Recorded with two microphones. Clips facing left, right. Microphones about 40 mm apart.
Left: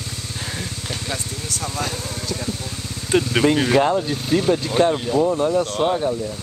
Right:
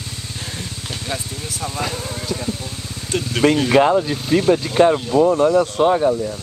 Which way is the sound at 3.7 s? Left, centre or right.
Centre.